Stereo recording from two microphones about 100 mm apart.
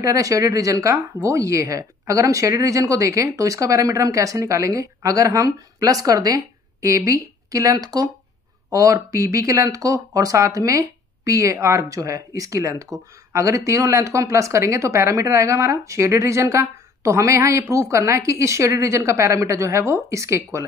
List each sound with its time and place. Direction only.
0.0 s speech: 35° right (ahead or behind)